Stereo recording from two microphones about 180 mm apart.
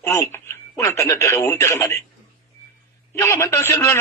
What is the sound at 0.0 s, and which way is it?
Speech, 15° left (ahead or behind).